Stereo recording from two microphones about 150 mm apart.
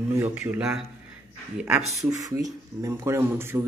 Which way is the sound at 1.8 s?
50° right (ahead or behind).